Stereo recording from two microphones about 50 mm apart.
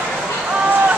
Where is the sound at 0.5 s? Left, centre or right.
Right.